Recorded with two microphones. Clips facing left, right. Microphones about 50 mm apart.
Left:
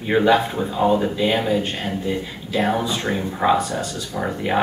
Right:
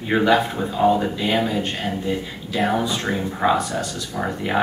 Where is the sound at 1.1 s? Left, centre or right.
Centre.